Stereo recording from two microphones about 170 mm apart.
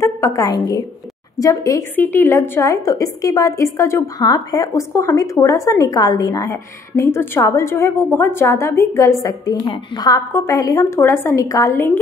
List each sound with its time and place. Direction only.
0.0 s a woman's voice: 15° left (ahead or behind)